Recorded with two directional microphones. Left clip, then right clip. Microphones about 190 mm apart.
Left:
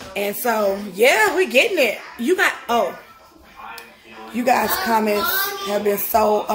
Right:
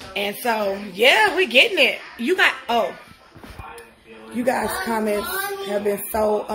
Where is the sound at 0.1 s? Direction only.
15° left (ahead or behind).